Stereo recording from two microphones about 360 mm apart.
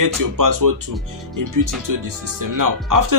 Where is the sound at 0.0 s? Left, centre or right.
Right.